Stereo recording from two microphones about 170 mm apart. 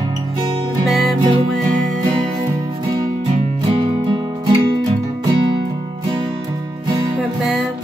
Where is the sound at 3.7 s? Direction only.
30° right (ahead or behind).